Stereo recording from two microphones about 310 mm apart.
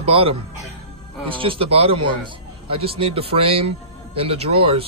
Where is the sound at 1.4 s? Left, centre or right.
Centre.